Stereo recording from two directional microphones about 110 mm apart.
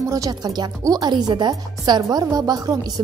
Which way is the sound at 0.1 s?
35° right (ahead or behind).